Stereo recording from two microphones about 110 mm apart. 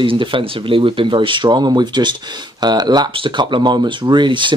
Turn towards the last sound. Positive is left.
turn(degrees=-45)  # may be behind; listen again after turning